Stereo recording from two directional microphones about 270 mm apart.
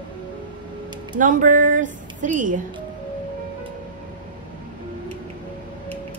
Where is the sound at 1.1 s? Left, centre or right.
Right.